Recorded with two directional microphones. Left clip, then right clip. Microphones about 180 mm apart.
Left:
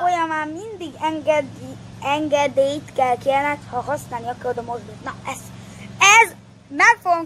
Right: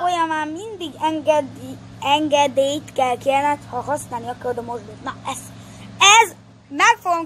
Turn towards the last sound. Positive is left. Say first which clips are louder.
# left 1 dB
turn(degrees=-30)  # may be behind; listen again after turning